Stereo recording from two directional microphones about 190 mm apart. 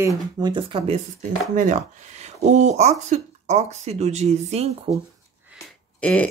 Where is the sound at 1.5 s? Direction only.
40° right (ahead or behind).